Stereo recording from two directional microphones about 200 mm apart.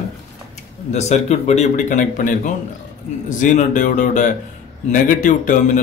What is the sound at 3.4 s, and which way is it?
Speech, 40° left (ahead or behind).